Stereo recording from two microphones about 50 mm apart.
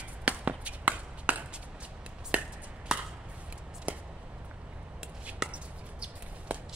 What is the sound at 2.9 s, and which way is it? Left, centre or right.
Chop, centre.